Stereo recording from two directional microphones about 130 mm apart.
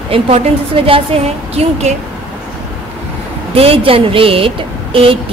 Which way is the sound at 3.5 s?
45° right (ahead or behind).